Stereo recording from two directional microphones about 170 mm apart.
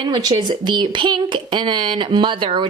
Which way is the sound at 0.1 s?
25° right (ahead or behind).